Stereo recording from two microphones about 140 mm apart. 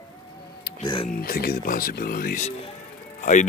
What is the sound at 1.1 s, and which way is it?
Speech, 90° left.